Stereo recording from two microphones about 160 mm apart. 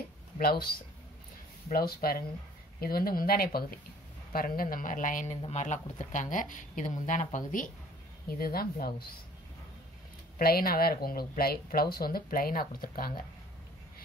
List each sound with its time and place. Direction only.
0.4 s speech: 70° left (ahead or behind)
1.7 s speech: 70° left (ahead or behind)
8.4 s speech: 70° left (ahead or behind)
10.4 s speech: 70° left (ahead or behind)